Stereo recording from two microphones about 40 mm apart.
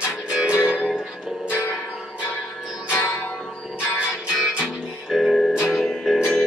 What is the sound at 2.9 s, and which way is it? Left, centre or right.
Music, left.